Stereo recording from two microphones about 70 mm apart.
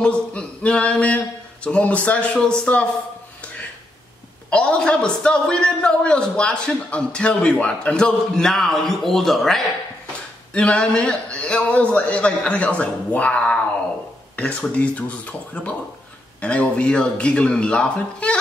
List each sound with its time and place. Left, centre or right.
0.0 s a sound: centre
4.5 s a man's voice: centre
10.5 s a man's voice: centre